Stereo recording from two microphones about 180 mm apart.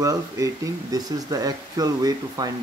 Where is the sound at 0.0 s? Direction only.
20° right (ahead or behind).